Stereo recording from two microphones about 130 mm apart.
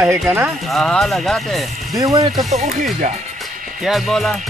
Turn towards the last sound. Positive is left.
turn(degrees=0)  # may be behind; listen again after turning